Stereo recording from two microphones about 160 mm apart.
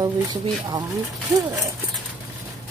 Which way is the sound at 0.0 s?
25° right (ahead or behind).